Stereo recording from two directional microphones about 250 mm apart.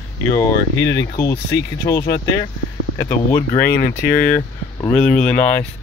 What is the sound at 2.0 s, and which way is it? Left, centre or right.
Speech, left.